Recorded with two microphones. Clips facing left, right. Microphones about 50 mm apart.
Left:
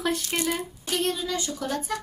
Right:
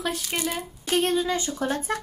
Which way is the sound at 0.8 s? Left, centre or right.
Right.